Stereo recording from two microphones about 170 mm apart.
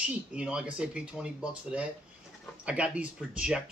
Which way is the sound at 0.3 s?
5° right (ahead or behind).